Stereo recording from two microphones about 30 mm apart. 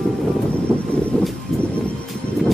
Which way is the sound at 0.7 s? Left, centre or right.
Centre.